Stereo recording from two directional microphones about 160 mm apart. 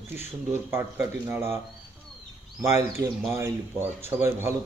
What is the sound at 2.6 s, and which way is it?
Speech, 15° right (ahead or behind).